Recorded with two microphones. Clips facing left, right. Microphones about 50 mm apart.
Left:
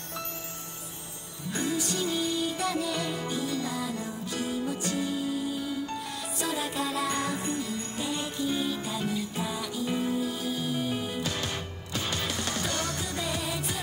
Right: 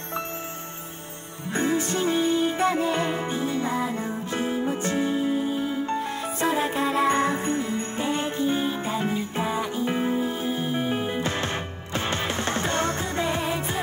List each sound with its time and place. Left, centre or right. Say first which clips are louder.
1.5 s music: right 6 dB; right